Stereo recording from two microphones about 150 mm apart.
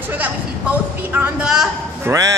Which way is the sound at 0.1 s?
10° right (ahead or behind).